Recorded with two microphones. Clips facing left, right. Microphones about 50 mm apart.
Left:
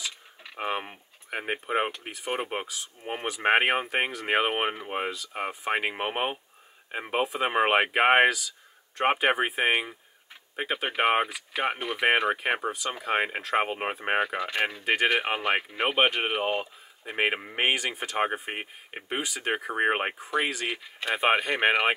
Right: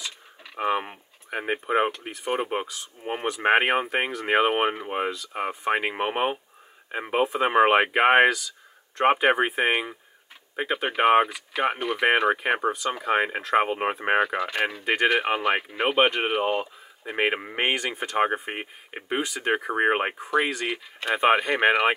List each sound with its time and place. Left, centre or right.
0.6 s speech: centre